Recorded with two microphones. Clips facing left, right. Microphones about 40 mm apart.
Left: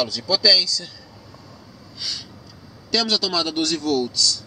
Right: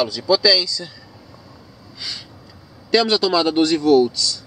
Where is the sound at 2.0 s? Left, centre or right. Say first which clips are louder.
Even; centre.